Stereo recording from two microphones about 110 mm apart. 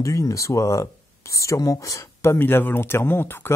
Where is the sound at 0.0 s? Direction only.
30° left (ahead or behind).